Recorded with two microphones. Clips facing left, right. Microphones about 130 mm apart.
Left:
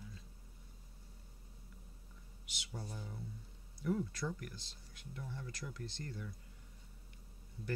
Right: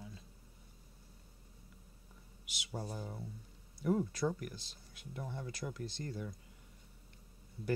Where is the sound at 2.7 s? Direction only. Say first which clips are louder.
Right 5 dB; 40° right (ahead or behind).